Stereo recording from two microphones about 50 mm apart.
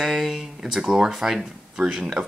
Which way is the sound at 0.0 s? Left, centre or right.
Centre.